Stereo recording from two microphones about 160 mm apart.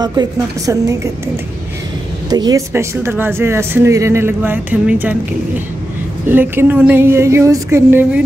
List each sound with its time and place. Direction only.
0.0 s a woman's voice: 25° right (ahead or behind)
2.2 s speech: 25° right (ahead or behind)
6.2 s speech: 15° right (ahead or behind)